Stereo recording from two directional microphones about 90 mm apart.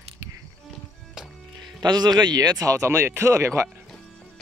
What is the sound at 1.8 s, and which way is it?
Speech, 50° right (ahead or behind).